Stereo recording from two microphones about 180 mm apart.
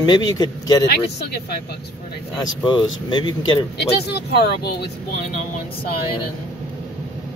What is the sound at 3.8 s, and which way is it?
Speech, 65° left (ahead or behind).